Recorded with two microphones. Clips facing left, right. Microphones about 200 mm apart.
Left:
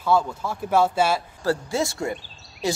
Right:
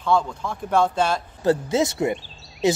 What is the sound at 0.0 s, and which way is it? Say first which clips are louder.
Speech: even; 5° left (ahead or behind).